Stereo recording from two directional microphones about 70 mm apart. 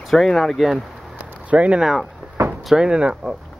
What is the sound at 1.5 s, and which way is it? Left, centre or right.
Speech, centre.